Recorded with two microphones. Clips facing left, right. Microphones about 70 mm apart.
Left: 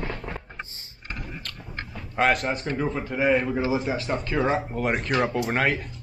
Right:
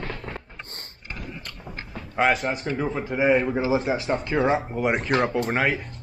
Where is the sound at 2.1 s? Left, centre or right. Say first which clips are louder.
Right 1 dB; centre.